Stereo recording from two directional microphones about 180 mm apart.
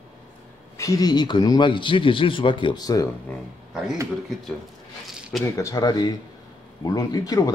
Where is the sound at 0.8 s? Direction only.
20° left (ahead or behind).